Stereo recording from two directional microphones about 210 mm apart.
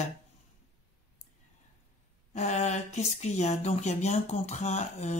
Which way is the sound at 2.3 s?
35° left (ahead or behind).